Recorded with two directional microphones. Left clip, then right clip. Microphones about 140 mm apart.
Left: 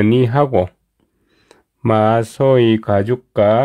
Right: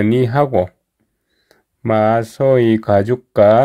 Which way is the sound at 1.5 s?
25° left (ahead or behind).